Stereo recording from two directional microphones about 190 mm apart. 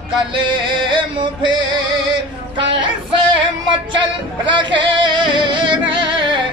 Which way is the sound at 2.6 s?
25° right (ahead or behind).